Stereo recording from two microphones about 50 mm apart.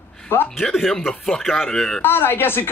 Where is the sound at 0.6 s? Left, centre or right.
Centre.